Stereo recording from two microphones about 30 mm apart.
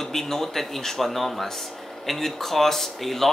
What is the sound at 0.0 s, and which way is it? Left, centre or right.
Speech, centre.